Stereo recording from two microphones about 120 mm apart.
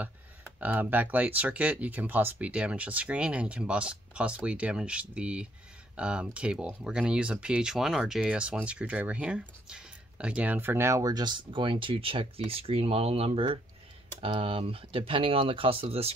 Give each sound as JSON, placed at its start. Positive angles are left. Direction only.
{"t": 0.6, "sound": "speech", "side_deg": -15}